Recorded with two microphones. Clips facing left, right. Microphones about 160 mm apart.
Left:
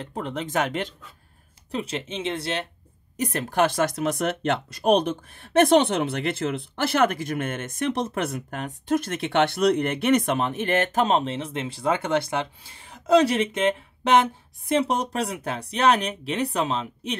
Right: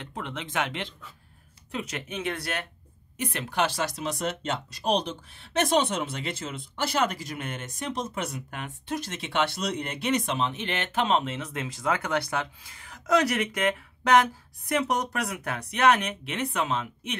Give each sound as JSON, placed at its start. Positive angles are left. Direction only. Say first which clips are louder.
{"t": 0.0, "sound": "speech", "louder": "left 6 dB", "side_deg": 35}
{"t": 1.7, "sound": "speech", "louder": "left 5 dB", "side_deg": 30}
{"t": 3.2, "sound": "speech", "louder": "left 5 dB", "side_deg": 40}